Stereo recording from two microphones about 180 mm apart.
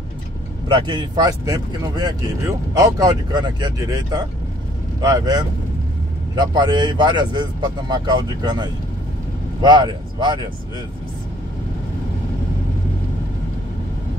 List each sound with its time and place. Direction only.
0.7 s speech: 25° right (ahead or behind)